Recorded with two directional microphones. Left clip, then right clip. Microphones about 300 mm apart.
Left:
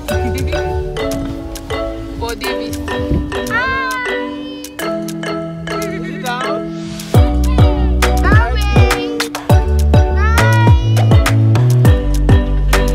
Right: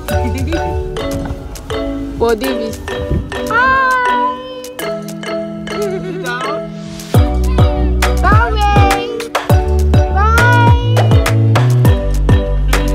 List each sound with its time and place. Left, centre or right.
0.1 s music: centre
2.2 s music: centre
7.2 s music: centre